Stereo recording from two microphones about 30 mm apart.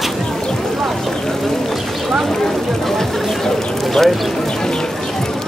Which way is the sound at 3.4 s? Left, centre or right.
Centre.